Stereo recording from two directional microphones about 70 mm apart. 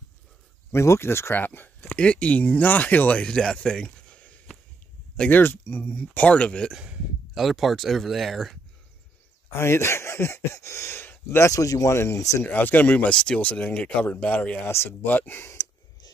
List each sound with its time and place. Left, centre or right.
0.7 s speech: left
1.3 s speech: left
1.8 s speech: centre
7.3 s speech: centre
9.5 s speech: left
11.5 s speech: left
12.4 s speech: left
14.7 s speech: left
15.0 s speech: left